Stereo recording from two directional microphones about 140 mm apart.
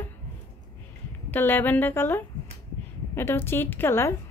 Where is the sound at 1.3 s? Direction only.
15° left (ahead or behind).